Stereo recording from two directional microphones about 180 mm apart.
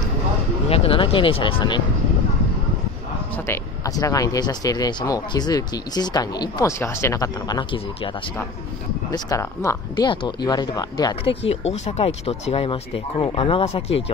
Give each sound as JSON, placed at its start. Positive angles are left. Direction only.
{"t": 0.7, "sound": "speech", "side_deg": 30}
{"t": 3.4, "sound": "speech", "side_deg": 15}
{"t": 9.1, "sound": "speech", "side_deg": 20}